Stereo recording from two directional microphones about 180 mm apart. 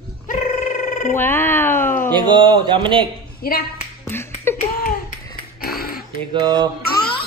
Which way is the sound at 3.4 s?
55° left (ahead or behind).